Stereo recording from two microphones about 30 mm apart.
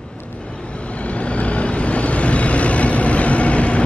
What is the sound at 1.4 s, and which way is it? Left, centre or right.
Vehicle, left.